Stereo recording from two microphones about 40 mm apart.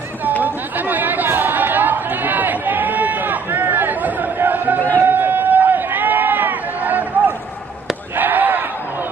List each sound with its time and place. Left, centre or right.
0.4 s chatter: right
4.5 s a sound: right
4.9 s run: right
8.2 s fireworks: right